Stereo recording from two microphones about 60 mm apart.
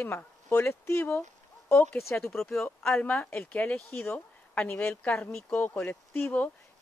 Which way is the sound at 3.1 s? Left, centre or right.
Left.